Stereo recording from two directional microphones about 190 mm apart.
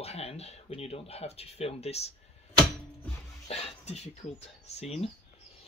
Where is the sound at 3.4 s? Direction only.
35° left (ahead or behind).